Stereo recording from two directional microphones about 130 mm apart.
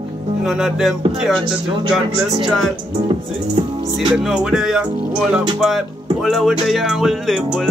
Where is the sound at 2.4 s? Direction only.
Centre (ahead or behind).